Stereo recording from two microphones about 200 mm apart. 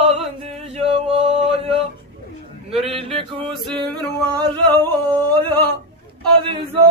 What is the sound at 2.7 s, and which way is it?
Chant, 30° right (ahead or behind).